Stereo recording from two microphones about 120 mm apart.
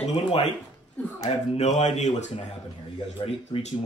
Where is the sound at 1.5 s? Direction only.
70° left (ahead or behind).